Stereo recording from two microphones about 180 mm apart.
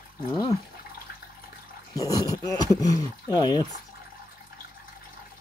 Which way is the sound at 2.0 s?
20° left (ahead or behind).